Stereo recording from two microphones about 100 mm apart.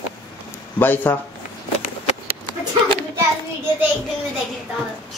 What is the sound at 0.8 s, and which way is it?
Speech, 20° left (ahead or behind).